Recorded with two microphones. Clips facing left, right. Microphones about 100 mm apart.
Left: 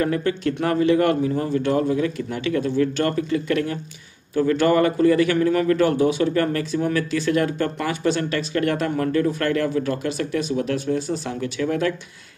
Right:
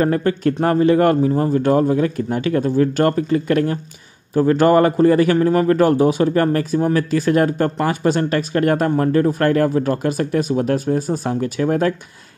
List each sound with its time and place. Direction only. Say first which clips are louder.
0.0 s a man's voice: right 5 dB; 40° right (ahead or behind)